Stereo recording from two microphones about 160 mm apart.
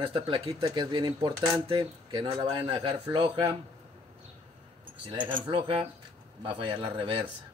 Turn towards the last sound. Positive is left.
turn(degrees=-30)  # may be behind; listen again after turning